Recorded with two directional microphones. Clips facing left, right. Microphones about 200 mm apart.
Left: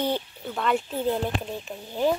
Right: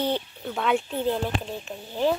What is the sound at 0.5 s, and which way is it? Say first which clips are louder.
Speech: right 1 dB; centre (ahead or behind).